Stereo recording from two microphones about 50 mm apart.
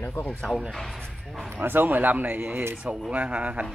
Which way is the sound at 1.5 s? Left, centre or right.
Right.